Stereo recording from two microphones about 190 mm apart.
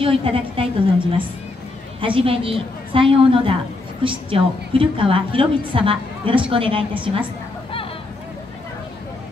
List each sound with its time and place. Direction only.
0.0 s a woman's voice: 30° right (ahead or behind)